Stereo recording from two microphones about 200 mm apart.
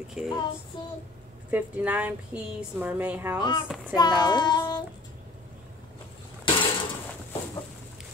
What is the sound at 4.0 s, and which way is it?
Child singing, 20° left (ahead or behind).